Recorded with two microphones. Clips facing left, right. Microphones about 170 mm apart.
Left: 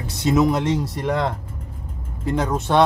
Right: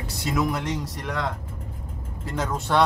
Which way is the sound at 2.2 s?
15° left (ahead or behind).